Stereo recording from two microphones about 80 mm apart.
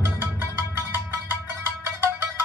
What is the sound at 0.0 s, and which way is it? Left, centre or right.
Music, right.